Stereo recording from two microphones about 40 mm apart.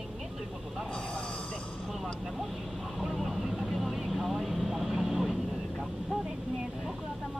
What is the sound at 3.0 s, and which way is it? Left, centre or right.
Vehicle, centre.